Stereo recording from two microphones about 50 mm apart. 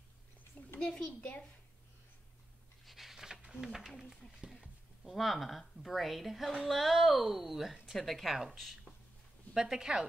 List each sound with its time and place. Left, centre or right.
0.7 s a woman's voice: centre
2.8 s pant: centre
3.9 s speech: centre
9.5 s a woman's voice: centre